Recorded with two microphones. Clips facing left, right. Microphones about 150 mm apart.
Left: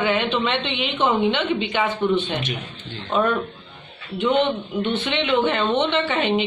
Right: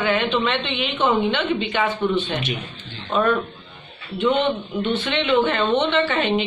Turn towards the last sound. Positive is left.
turn(degrees=20)  # may be behind; listen again after turning